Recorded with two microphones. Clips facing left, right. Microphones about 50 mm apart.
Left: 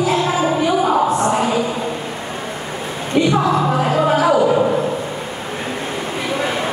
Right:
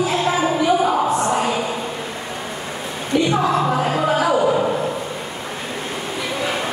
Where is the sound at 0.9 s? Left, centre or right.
Left.